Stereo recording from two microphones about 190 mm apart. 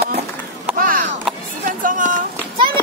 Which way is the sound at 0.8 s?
45° right (ahead or behind).